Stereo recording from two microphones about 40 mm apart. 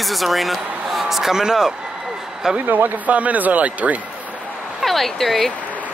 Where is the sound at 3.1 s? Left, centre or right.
Right.